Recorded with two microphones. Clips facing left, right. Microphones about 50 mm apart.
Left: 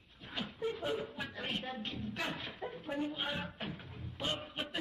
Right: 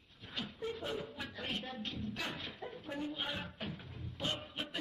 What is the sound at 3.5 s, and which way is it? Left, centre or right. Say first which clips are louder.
Music: left 1 dB; centre.